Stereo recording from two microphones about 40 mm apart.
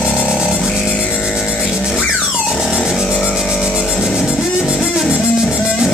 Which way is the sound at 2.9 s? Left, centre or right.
Centre.